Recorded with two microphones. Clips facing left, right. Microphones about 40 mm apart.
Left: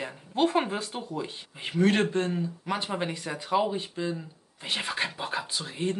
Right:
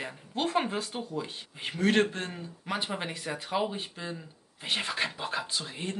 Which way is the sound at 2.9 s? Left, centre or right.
Centre.